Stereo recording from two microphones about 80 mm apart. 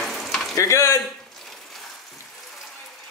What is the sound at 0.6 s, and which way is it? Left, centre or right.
Speech, left.